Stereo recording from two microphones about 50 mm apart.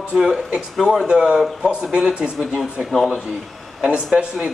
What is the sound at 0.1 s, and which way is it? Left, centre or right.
Speech, centre.